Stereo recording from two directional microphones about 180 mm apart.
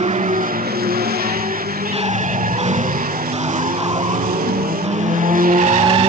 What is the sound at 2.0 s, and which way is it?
Skidding, 40° right (ahead or behind).